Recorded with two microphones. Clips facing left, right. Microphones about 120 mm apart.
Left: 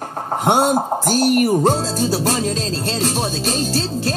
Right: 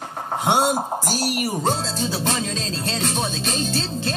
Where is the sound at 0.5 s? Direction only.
15° left (ahead or behind).